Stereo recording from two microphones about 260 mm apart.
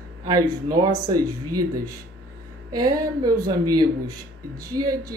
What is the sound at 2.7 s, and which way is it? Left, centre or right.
Speech, centre.